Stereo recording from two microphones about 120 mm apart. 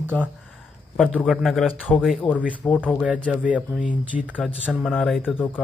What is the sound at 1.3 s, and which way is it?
Speech, centre (ahead or behind).